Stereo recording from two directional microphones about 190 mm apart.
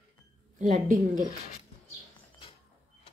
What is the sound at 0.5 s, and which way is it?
Speech, 40° right (ahead or behind).